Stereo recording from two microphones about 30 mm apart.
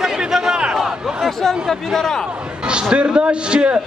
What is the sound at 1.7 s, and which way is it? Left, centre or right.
Speech, centre.